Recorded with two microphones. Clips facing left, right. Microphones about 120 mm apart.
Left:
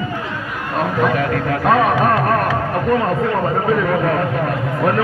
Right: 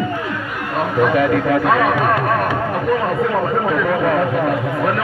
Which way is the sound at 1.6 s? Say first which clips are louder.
Left 1 dB; 35° left (ahead or behind).